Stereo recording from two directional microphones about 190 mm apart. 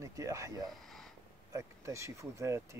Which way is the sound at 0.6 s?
Centre (ahead or behind).